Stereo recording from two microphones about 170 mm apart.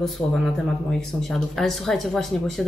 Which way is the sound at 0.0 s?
5° left (ahead or behind).